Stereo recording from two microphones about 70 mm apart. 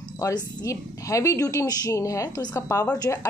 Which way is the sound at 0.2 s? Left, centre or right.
Left.